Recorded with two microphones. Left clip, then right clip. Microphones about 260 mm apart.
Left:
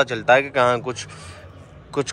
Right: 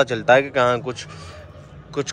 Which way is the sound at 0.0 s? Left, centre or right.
Centre.